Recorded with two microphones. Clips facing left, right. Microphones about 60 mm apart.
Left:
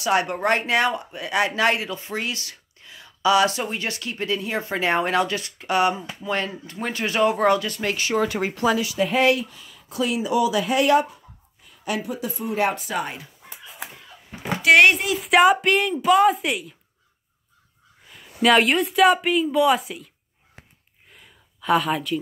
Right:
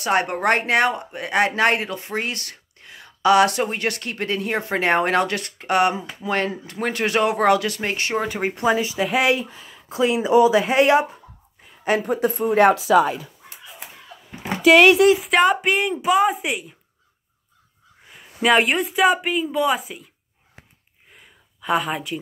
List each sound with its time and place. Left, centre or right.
0.0 s speech: right
6.8 s speech: right
8.3 s speech: centre
9.0 s speech: centre
9.3 s speech: right
11.6 s speech: right
15.1 s speech: centre
18.1 s speech: centre
21.1 s a sound: centre